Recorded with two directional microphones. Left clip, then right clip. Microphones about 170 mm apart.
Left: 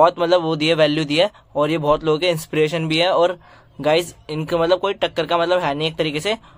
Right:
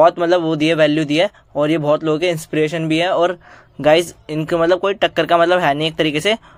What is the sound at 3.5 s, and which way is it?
Speech, 15° right (ahead or behind).